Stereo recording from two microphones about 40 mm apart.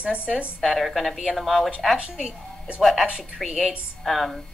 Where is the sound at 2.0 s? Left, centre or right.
Right.